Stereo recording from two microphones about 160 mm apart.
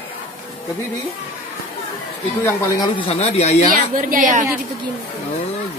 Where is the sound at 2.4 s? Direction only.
20° left (ahead or behind).